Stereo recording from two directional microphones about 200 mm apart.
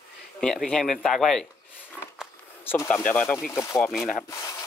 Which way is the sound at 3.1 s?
10° left (ahead or behind).